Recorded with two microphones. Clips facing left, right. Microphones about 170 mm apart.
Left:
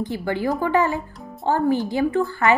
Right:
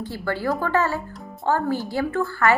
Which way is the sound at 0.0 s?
20° left (ahead or behind).